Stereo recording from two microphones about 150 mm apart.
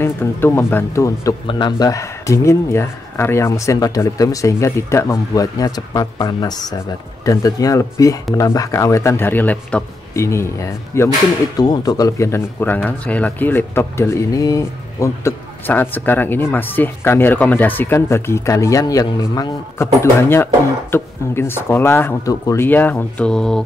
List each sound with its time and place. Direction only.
0.0 s speech: 15° left (ahead or behind)
1.5 s speech: 30° left (ahead or behind); by 23.6 s 5° left (ahead or behind)